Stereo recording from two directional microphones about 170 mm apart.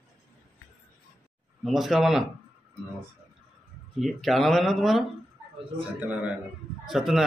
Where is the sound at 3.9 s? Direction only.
Centre (ahead or behind).